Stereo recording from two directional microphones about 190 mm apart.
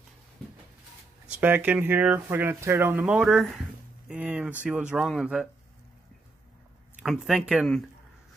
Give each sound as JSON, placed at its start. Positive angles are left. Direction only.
{"t": 1.3, "sound": "speech", "side_deg": -10}
{"t": 7.0, "sound": "speech", "side_deg": 0}